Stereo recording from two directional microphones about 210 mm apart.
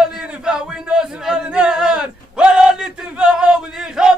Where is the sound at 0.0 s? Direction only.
5° right (ahead or behind).